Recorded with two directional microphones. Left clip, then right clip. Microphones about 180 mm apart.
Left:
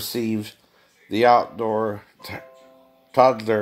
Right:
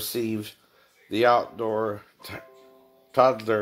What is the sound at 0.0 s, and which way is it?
Speech, 35° left (ahead or behind).